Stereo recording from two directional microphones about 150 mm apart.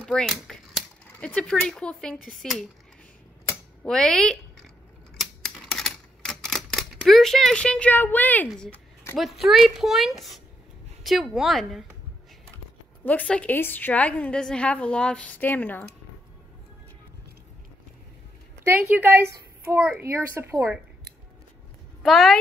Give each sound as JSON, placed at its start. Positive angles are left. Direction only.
{"t": 0.0, "sound": "speech", "side_deg": 5}
{"t": 3.8, "sound": "speech", "side_deg": 5}
{"t": 5.2, "sound": "typewriter", "side_deg": 0}
{"t": 9.1, "sound": "speech", "side_deg": 0}
{"t": 13.0, "sound": "a woman's voice", "side_deg": 10}
{"t": 18.6, "sound": "a child's voice", "side_deg": -15}
{"t": 22.0, "sound": "speech", "side_deg": 0}